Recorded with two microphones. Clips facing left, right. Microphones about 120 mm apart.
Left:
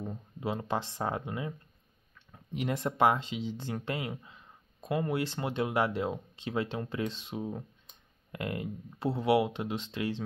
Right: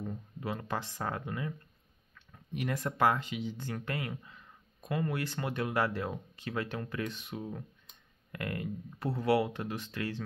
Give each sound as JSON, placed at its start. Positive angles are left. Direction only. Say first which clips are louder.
{"t": 0.0, "sound": "speech", "louder": "left 2 dB", "side_deg": 20}